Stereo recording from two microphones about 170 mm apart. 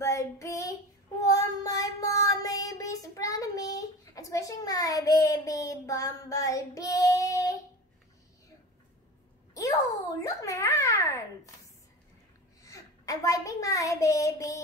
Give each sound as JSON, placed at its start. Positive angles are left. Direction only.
{"t": 0.0, "sound": "child singing", "side_deg": 15}
{"t": 9.5, "sound": "a sound", "side_deg": 20}
{"t": 12.6, "sound": "child singing", "side_deg": 20}